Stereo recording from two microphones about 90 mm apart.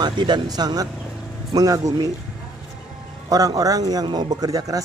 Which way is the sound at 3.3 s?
40° right (ahead or behind).